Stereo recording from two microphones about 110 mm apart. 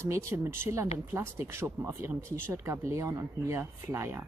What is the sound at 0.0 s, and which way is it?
Speech, 25° right (ahead or behind).